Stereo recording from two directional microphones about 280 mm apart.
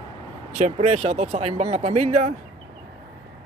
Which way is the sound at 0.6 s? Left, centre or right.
Right.